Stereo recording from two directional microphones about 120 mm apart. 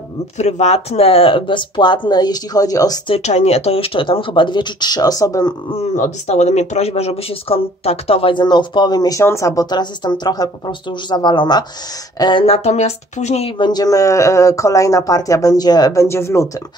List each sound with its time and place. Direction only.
0.4 s speech: 65° left (ahead or behind); by 3.0 s 30° left (ahead or behind)
3.2 s speech: 65° left (ahead or behind); by 5.5 s 30° left (ahead or behind)
5.7 s speech: 70° left (ahead or behind); by 9.2 s 35° left (ahead or behind)
9.2 s speech: 25° left (ahead or behind); by 12.4 s 40° left (ahead or behind)
12.4 s speech: 65° left (ahead or behind)
13.6 s speech: 35° left (ahead or behind)